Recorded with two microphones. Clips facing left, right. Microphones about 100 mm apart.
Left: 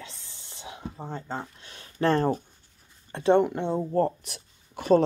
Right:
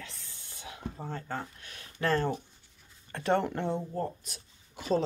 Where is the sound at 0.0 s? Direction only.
20° left (ahead or behind); by 2.4 s 35° left (ahead or behind).